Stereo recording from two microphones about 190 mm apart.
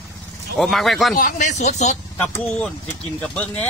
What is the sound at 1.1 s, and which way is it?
Speech, 45° left (ahead or behind).